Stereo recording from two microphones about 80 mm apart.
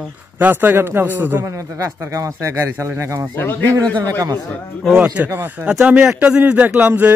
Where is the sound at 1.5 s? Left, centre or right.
Right.